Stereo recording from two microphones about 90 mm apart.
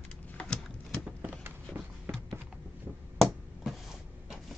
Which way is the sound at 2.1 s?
25° right (ahead or behind).